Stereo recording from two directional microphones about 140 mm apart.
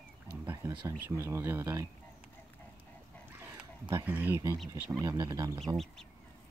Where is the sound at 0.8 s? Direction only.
20° right (ahead or behind).